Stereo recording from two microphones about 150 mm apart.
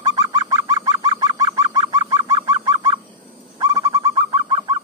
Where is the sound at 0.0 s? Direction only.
25° right (ahead or behind).